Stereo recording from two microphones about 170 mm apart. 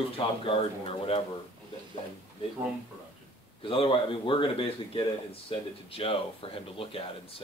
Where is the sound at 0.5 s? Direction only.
30° left (ahead or behind).